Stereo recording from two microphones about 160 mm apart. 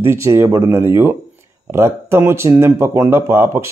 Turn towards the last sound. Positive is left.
turn(degrees=-15)  # may be behind; listen again after turning